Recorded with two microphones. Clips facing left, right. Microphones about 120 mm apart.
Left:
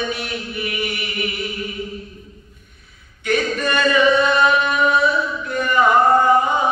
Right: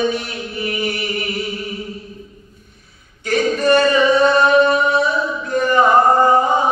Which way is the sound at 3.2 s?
35° right (ahead or behind).